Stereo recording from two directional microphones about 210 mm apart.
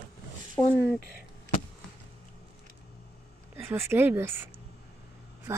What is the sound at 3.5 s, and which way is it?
A woman's voice, 10° right (ahead or behind).